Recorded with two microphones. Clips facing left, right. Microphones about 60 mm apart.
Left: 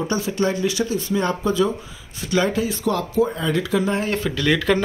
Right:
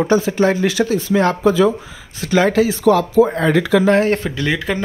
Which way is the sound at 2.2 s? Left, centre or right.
Right.